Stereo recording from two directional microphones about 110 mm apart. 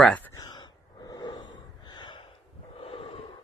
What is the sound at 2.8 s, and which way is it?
Snort, 65° left (ahead or behind).